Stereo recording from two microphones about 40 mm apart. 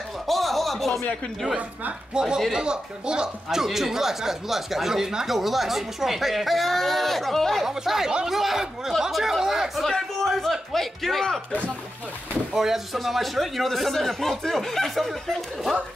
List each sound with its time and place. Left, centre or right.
0.3 s a sound: centre
2.1 s speech: centre
3.4 s speech: centre
7.6 s speech: centre
9.8 s a sound: centre
12.5 s speech: centre